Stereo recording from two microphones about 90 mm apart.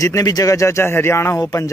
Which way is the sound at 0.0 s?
40° left (ahead or behind).